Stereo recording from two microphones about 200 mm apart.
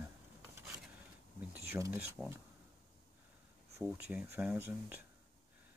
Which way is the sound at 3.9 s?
5° right (ahead or behind).